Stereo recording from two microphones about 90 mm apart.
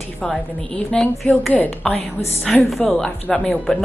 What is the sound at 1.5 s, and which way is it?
Speech, 15° left (ahead or behind).